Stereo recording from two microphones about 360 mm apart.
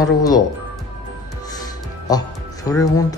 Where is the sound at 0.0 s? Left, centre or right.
Centre.